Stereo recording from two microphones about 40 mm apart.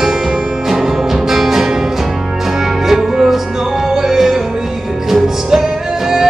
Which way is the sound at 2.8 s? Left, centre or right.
Centre.